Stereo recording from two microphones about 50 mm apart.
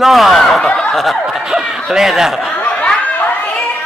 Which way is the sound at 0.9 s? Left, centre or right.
Centre.